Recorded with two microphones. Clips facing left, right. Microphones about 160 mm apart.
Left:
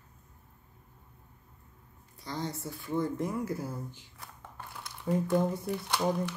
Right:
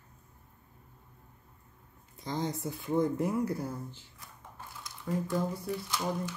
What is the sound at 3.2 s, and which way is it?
Speech, 5° right (ahead or behind).